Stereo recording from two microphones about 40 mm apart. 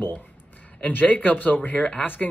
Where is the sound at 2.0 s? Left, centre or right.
Left.